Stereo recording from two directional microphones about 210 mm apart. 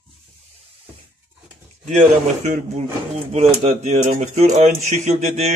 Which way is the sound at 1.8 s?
35° right (ahead or behind).